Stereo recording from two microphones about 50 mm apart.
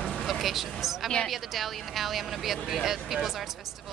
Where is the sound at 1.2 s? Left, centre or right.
Centre.